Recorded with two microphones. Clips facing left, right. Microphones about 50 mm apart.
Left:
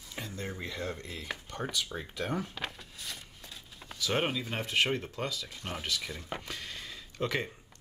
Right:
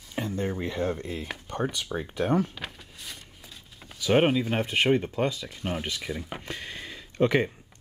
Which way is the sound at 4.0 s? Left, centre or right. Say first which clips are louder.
Right 9 dB; right.